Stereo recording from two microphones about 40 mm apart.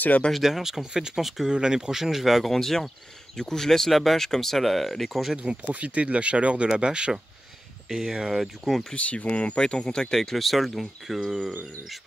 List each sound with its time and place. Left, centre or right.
0.3 s speech: centre
1.2 s speech: centre
1.5 s speech: centre
2.5 s speech: centre
5.4 s speech: right; by 8.8 s centre
8.9 s speech: left; by 10.3 s centre
10.3 s speech: centre
10.7 s speech: centre